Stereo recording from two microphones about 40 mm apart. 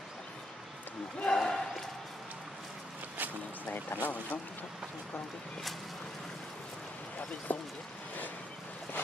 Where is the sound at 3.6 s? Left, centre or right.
Left.